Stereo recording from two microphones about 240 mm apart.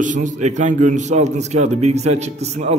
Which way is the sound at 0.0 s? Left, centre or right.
Right.